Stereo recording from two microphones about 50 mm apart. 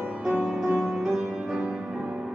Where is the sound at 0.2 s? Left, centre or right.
Centre.